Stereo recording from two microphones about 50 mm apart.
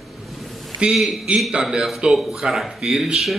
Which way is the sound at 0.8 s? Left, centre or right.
Centre.